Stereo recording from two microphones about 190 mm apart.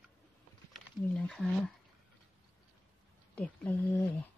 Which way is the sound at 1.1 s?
5° left (ahead or behind).